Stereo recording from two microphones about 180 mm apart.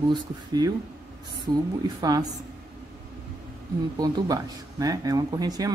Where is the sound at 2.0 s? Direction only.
20° right (ahead or behind).